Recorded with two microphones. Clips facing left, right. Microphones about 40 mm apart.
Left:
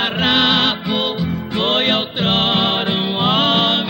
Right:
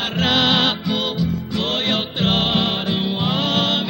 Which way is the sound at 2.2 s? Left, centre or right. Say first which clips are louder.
Left 2 dB; left.